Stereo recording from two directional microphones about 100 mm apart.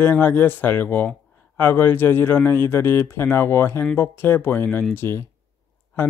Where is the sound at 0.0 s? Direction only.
20° left (ahead or behind).